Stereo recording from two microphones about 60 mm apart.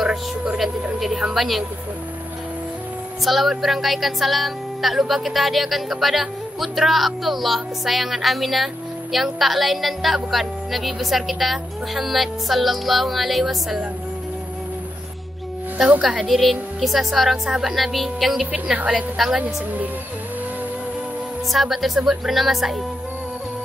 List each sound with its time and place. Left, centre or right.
0.0 s a sound: centre
0.9 s speech: centre
3.3 s speech: centre
16.0 s a woman's voice: centre
18.5 s a woman's voice: right
21.5 s speech: centre